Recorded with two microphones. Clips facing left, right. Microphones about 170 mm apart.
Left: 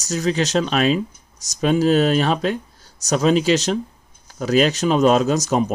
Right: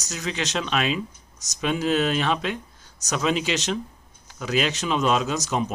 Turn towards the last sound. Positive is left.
turn(degrees=45)  # may be behind; listen again after turning